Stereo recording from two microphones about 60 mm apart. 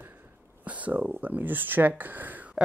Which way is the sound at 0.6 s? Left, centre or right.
Right.